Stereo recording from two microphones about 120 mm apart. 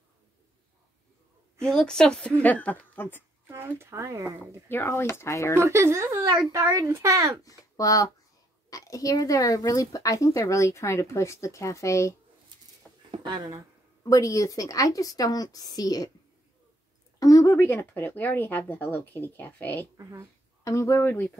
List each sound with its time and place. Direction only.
1.6 s a woman's voice: 5° left (ahead or behind)
3.4 s speech: 20° right (ahead or behind)
4.6 s speech: 20° left (ahead or behind)
5.6 s speech: 25° right (ahead or behind)
7.4 s speech: 30° left (ahead or behind)
13.2 s speech: 35° right (ahead or behind)
14.0 s speech: 25° left (ahead or behind)
17.2 s speech: 30° left (ahead or behind)
20.0 s speech: 25° right (ahead or behind)
20.6 s speech: 25° left (ahead or behind)